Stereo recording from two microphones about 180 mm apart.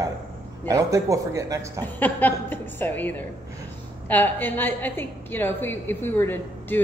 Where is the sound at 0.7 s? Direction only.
20° right (ahead or behind).